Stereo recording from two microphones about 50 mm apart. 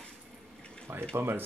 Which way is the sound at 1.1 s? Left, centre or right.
Right.